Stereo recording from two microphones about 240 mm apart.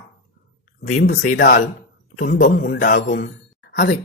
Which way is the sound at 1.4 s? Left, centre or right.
Left.